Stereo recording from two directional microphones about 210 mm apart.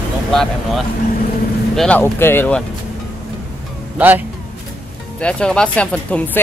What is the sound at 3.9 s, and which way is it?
Speech, 10° right (ahead or behind).